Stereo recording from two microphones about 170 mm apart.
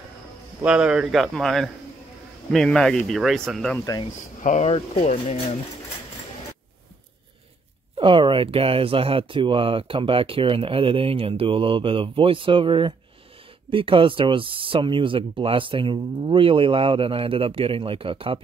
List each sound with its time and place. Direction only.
0.6 s speech: 5° right (ahead or behind)
4.1 s speech: 45° left (ahead or behind)
8.0 s speech: 30° right (ahead or behind)